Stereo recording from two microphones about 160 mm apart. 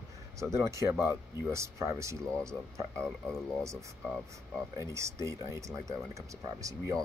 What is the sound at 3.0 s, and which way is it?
Speech, centre (ahead or behind).